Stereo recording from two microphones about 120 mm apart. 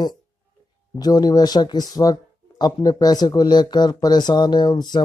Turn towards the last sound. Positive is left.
turn(degrees=35)  # may be behind; listen again after turning